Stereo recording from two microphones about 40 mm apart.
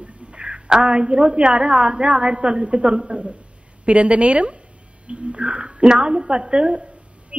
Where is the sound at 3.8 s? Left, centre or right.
Right.